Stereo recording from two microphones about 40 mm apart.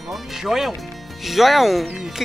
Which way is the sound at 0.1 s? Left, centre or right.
Centre.